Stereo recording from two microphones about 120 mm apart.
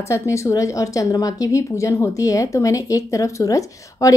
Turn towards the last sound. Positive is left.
turn(degrees=30)  # may be behind; listen again after turning